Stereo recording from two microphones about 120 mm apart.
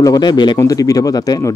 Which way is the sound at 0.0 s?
35° left (ahead or behind).